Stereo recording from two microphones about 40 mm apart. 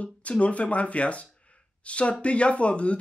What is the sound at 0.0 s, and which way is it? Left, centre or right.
Speech, left.